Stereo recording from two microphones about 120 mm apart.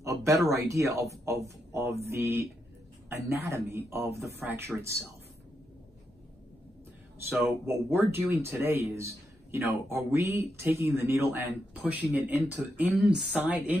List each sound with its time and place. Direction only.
0.0 s speech: 25° right (ahead or behind)
7.4 s speech: 20° right (ahead or behind)